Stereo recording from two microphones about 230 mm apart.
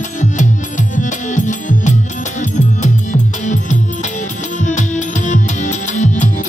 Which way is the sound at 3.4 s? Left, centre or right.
Left.